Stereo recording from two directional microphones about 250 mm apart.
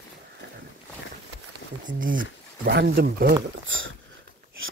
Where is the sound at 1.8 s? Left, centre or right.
Right.